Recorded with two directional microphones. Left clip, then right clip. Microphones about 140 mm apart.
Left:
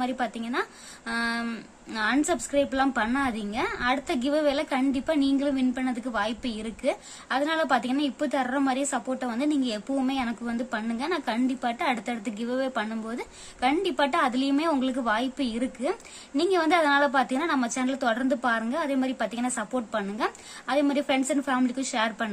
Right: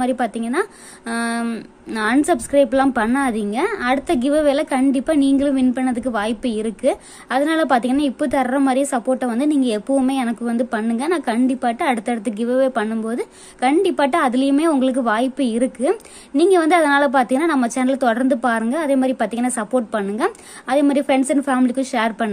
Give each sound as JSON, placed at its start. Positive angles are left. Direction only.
{"t": 0.0, "sound": "a woman's voice", "side_deg": -45}